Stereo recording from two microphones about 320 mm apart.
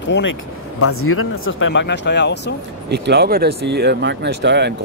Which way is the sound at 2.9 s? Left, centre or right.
Right.